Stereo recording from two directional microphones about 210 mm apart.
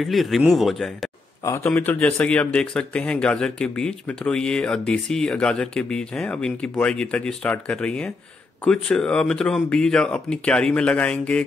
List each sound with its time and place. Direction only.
0.0 s speech: centre (ahead or behind)